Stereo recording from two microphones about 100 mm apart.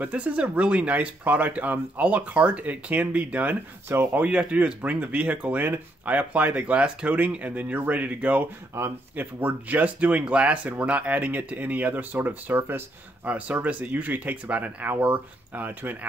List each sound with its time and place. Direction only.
0.0 s speech: 15° right (ahead or behind)